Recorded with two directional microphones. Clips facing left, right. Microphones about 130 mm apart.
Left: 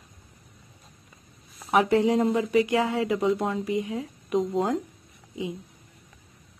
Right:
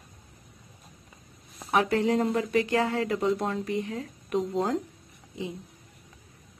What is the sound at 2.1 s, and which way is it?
A woman's voice, 5° left (ahead or behind).